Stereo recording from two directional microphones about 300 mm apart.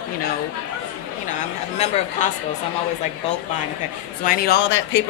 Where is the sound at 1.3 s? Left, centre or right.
Left.